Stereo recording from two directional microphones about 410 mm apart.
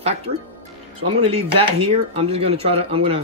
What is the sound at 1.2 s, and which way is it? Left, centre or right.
Speech, centre.